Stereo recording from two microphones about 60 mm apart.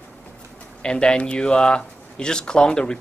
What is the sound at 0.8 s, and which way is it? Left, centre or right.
Speech, centre.